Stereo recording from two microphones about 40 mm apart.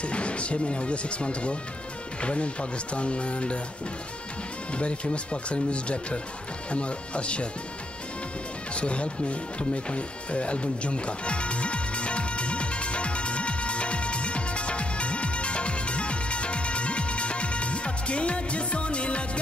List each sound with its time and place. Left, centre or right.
0.0 s speech: left
4.7 s speech: left
8.7 s music: left